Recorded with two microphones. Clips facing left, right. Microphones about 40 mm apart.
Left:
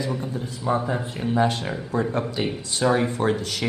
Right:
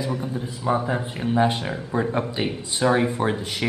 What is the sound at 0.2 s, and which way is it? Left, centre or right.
Speech, centre.